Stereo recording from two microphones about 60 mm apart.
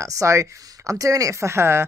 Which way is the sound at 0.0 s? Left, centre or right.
Right.